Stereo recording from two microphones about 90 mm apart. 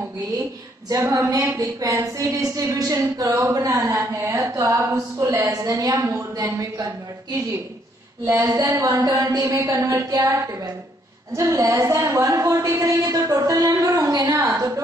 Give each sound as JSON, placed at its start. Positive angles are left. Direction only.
{"t": 0.8, "sound": "speech", "side_deg": -40}